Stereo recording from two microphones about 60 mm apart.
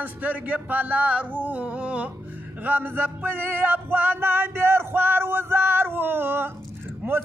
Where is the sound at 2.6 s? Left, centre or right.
Right.